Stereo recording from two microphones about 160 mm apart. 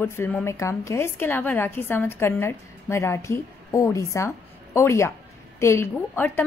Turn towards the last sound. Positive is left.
turn(degrees=15)  # may be behind; listen again after turning